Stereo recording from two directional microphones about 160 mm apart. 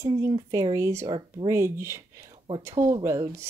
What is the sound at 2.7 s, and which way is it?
Speech, 30° right (ahead or behind).